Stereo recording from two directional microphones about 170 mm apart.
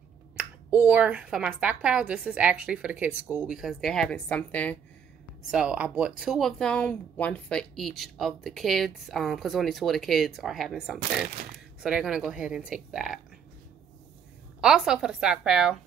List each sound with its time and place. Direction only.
0.4 s speech: 10° right (ahead or behind); by 4.7 s 10° left (ahead or behind)
5.5 s speech: 5° right (ahead or behind)
14.6 s speech: 5° right (ahead or behind)